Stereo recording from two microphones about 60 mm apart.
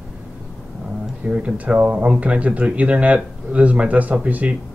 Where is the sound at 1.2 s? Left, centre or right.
Right.